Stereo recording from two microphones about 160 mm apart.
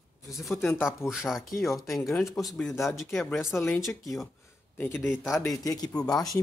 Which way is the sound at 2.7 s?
20° left (ahead or behind).